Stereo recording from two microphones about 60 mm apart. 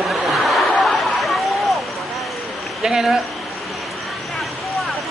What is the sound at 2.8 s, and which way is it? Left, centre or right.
Speech, centre.